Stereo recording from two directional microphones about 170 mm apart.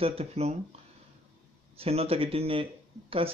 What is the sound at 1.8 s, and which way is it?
Speech, 35° right (ahead or behind).